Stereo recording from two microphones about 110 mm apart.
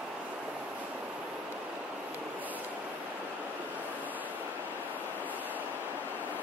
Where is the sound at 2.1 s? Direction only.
15° right (ahead or behind).